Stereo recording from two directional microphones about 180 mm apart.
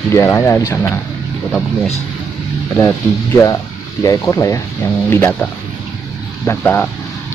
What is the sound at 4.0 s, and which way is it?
Speech, 20° left (ahead or behind).